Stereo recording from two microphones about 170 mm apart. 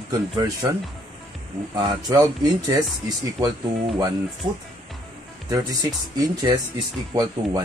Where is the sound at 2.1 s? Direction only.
20° right (ahead or behind).